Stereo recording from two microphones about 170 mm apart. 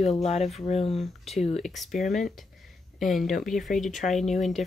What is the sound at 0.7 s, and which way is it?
Speech, 35° left (ahead or behind).